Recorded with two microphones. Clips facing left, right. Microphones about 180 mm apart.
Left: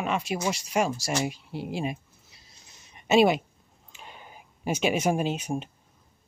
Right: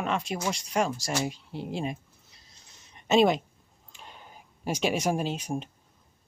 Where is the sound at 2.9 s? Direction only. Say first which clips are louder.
Left 1 dB; 10° left (ahead or behind).